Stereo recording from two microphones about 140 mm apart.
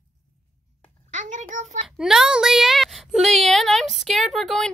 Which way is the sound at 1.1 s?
60° right (ahead or behind).